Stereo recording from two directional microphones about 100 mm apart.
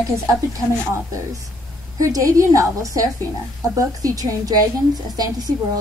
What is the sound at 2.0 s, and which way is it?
A woman's voice, 35° right (ahead or behind).